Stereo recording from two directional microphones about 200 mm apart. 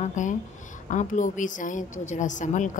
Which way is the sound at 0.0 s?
40° left (ahead or behind).